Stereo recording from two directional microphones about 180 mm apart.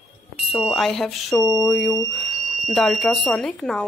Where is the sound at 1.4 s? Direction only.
20° left (ahead or behind).